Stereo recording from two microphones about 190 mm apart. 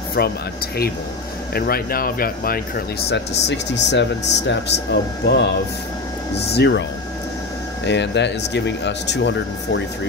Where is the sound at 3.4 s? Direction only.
65° left (ahead or behind).